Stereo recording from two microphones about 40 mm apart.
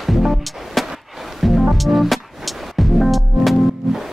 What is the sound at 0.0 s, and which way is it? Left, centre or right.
Music, centre.